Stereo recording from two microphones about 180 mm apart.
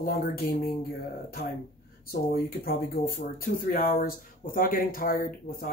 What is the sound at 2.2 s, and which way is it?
Speech, 55° left (ahead or behind).